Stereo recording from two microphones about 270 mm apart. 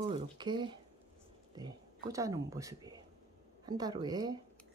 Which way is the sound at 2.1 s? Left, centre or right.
Centre.